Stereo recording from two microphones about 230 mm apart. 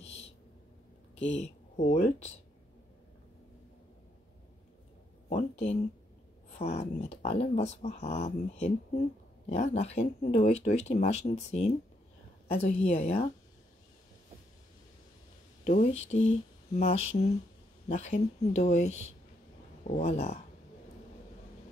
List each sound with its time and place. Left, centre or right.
1.3 s speech: left
5.3 s speech: left
15.6 s speech: left